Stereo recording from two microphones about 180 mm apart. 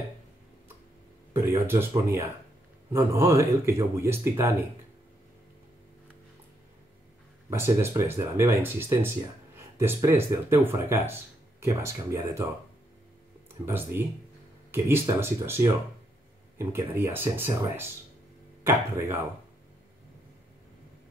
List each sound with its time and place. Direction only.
1.5 s speech: 15° right (ahead or behind)
7.4 s speech: 15° right (ahead or behind)
13.7 s speech: 10° right (ahead or behind)